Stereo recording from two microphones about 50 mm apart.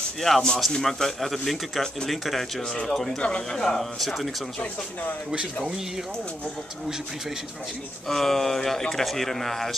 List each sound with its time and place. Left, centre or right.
0.2 s speech: centre
2.7 s speech: centre
3.5 s speech: centre
8.1 s speech: centre